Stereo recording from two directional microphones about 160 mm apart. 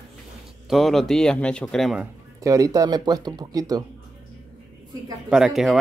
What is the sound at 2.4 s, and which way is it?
Speech, 20° right (ahead or behind).